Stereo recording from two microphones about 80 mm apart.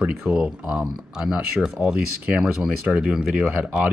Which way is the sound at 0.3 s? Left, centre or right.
Centre.